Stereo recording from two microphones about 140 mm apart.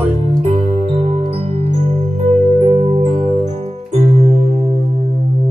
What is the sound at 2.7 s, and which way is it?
Music, 50° right (ahead or behind).